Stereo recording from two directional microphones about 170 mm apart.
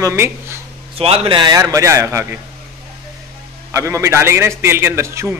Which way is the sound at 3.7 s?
15° right (ahead or behind).